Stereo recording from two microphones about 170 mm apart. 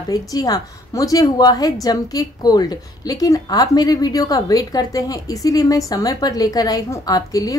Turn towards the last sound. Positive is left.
turn(degrees=20)  # may be behind; listen again after turning